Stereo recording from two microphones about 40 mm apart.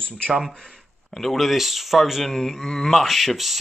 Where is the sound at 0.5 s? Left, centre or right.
Centre.